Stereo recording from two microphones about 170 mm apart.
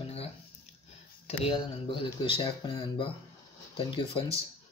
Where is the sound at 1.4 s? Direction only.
30° left (ahead or behind).